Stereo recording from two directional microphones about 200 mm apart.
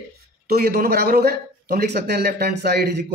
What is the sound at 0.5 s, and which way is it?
Speech, 50° right (ahead or behind).